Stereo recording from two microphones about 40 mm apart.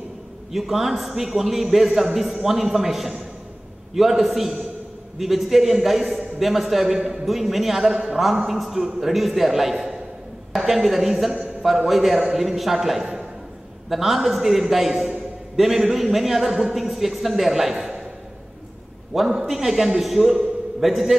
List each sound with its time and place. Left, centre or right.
0.5 s a man's voice: centre
17.7 s a sound: centre
19.4 s a man's voice: centre